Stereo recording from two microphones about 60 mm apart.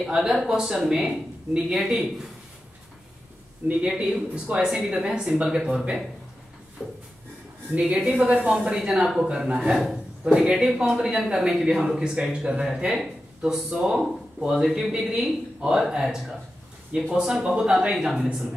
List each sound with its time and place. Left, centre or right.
0.0 s speech: centre
3.6 s speech: centre
6.8 s a sound: centre
7.8 s speech: centre
8.1 s a woman's voice: right
8.4 s speech: centre
9.8 s speech: centre